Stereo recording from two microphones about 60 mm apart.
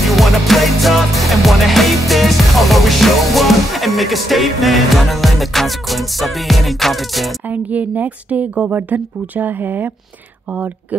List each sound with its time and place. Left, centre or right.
0.0 s music: centre
7.4 s a woman's voice: right